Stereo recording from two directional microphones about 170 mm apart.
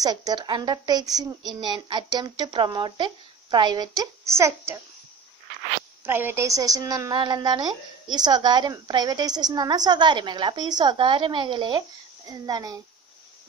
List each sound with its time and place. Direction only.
0.0 s a woman's voice: 20° right (ahead or behind)
6.0 s a woman's voice: 15° right (ahead or behind)